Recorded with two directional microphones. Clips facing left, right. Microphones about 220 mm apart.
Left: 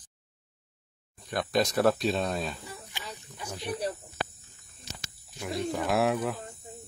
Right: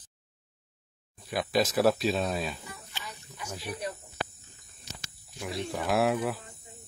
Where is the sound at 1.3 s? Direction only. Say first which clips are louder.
Even; 5° right (ahead or behind).